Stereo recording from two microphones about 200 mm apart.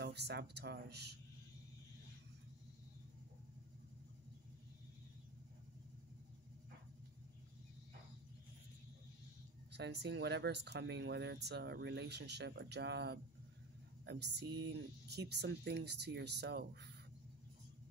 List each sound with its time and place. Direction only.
0.0 s speech: 55° right (ahead or behind)
9.7 s speech: 60° right (ahead or behind)